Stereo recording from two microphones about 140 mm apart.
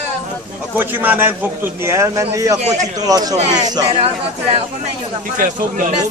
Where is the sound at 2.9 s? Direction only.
25° right (ahead or behind).